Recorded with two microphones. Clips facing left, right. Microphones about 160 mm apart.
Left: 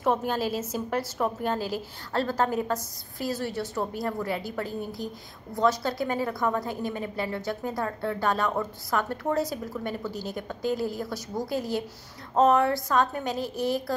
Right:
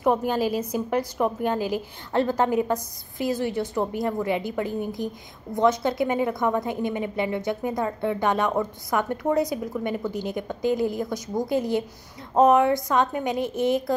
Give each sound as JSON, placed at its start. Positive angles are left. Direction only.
{"t": 0.0, "sound": "a woman's voice", "side_deg": -10}